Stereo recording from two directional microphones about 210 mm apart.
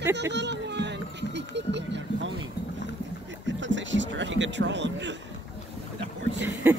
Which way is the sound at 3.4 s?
60° right (ahead or behind).